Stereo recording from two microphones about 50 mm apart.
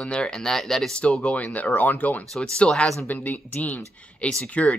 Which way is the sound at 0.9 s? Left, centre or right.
Left.